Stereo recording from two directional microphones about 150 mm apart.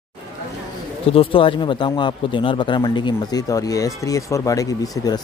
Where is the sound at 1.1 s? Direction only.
35° left (ahead or behind).